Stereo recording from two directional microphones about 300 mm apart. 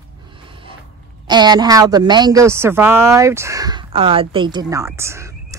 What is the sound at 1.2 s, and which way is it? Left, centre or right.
Speech, centre.